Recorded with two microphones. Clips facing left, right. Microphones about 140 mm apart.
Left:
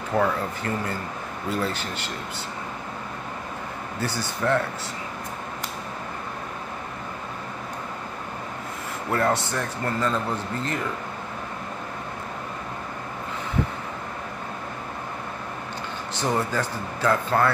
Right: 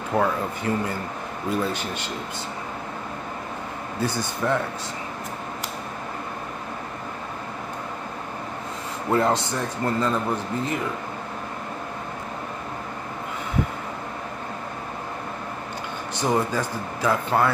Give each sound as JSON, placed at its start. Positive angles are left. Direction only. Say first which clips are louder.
{"t": 0.2, "sound": "speech", "louder": "even", "side_deg": -15}
{"t": 4.0, "sound": "speech", "louder": "right 1 dB", "side_deg": -15}
{"t": 9.1, "sound": "speech", "louder": "right 2 dB", "side_deg": -20}
{"t": 16.2, "sound": "speech", "louder": "right 2 dB", "side_deg": -15}